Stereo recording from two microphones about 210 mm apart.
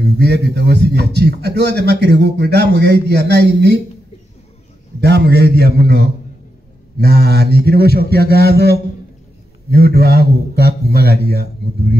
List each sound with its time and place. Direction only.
0.2 s a man's voice: 50° right (ahead or behind)
5.0 s a man's voice: 50° right (ahead or behind)